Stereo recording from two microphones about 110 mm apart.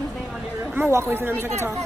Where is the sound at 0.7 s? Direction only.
20° right (ahead or behind).